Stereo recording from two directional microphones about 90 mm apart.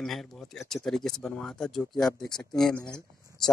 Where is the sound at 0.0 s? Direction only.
5° left (ahead or behind).